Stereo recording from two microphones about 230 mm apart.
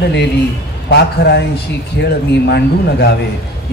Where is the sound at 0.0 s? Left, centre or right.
Left.